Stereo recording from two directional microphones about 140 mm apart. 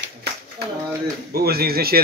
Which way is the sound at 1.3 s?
90° right.